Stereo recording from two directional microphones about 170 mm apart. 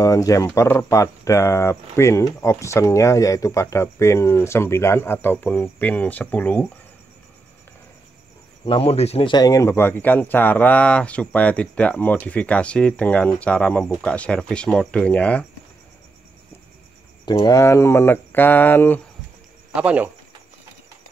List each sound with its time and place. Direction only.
0.0 s speech: 20° left (ahead or behind)
8.6 s speech: 35° left (ahead or behind); by 15.4 s 5° left (ahead or behind)
17.2 s speech: 25° left (ahead or behind)
19.7 s speech: 5° right (ahead or behind)